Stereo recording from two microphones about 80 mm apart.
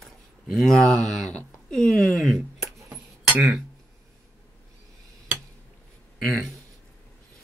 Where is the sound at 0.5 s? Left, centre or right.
Centre.